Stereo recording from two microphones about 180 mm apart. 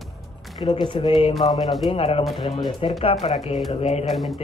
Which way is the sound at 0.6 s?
25° left (ahead or behind).